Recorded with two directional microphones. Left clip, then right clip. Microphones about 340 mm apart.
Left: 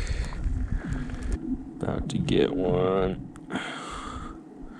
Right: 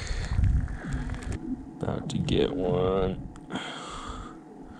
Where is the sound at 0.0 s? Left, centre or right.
Centre.